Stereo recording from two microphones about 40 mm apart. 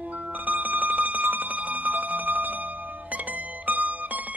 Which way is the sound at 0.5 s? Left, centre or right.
Right.